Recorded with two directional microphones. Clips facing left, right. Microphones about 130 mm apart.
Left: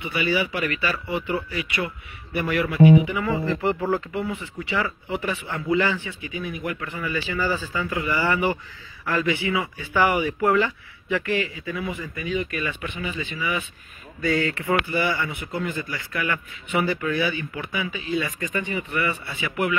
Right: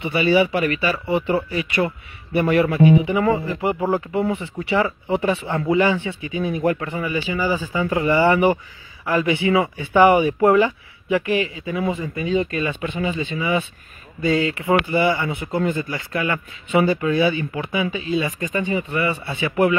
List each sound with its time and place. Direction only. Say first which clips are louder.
0.0 s a man's voice: right 7 dB; 25° right (ahead or behind)
6.9 s a man's voice: right 4 dB; 20° right (ahead or behind)